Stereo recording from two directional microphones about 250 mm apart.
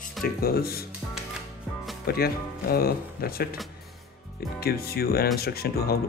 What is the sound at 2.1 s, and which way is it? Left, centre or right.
Speech, left.